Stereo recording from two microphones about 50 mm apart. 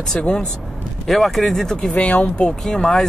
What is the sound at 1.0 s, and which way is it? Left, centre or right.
Speech, centre.